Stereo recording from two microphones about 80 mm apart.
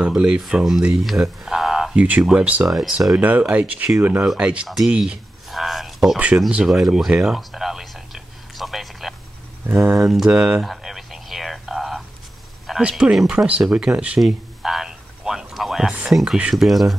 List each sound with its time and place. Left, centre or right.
0.0 s speech: centre
2.0 s speech: centre
4.6 s mantra: centre
4.9 s a sound: centre
6.1 s speech: centre
6.6 s a sound: centre
9.9 s mantra: centre
10.7 s a sound: centre
12.8 s speech: centre
16.1 s mantra: centre